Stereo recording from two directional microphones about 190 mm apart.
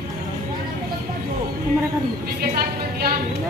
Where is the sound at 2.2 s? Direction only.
55° right (ahead or behind).